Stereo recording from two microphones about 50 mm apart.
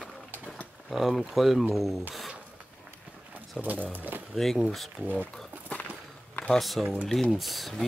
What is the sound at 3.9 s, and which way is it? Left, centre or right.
Speech, right.